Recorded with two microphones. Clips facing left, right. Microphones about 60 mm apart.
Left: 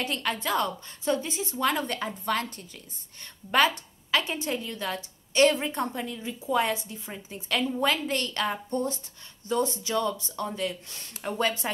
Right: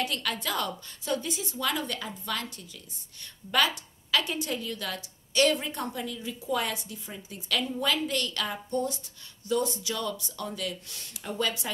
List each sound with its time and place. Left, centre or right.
0.0 s a woman's voice: left